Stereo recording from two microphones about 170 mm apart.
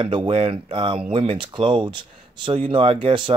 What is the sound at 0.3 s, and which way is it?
Speech, 35° right (ahead or behind).